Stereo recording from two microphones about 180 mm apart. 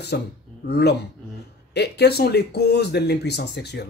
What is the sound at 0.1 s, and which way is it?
Speech, 65° left (ahead or behind).